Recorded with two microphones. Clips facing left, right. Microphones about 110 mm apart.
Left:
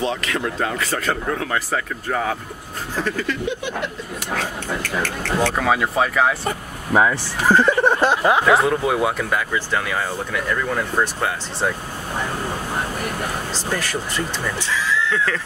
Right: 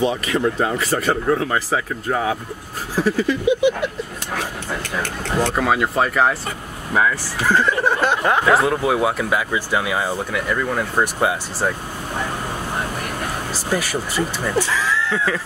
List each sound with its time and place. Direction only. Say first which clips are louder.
0.3 s speech: right 4 dB; 5° right (ahead or behind)
3.0 s speech: right 5 dB; 10° right (ahead or behind)
5.6 s speech: right 2 dB; 5° right (ahead or behind)
6.9 s speech: left 2 dB; 25° left (ahead or behind)
8.1 s speech: left 1 dB; 10° left (ahead or behind); by 11.3 s 15° right (ahead or behind)
13.7 s speech: right 4 dB; 10° right (ahead or behind)
14.6 s speech: right 2 dB; 45° right (ahead or behind)
15.1 s speech: right 1 dB; 10° right (ahead or behind)